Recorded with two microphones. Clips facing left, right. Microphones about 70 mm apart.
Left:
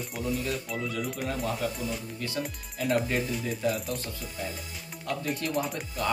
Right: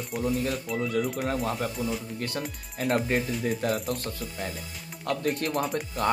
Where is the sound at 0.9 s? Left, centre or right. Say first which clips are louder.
Right 5 dB; right.